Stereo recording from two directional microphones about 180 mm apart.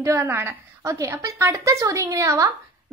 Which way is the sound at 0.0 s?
15° right (ahead or behind).